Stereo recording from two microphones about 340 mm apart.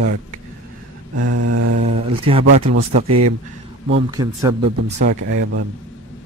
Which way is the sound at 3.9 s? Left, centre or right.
Centre.